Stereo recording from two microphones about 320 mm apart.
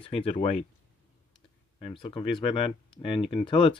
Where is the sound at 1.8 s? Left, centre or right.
Centre.